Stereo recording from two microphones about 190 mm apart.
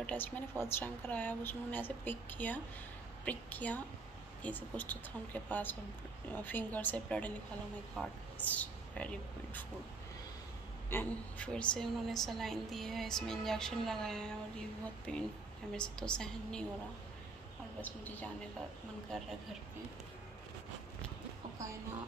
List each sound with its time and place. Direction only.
0.0 s a woman's voice: 10° left (ahead or behind)
10.9 s a woman's voice: 10° left (ahead or behind)
18.0 s a woman's voice: 10° left (ahead or behind)